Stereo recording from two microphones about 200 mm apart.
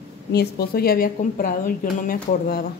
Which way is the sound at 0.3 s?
55° left (ahead or behind).